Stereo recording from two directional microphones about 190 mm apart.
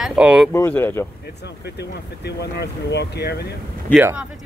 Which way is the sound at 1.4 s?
60° left (ahead or behind).